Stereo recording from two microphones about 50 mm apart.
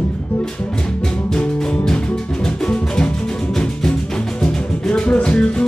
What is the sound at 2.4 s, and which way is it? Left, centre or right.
Music, centre.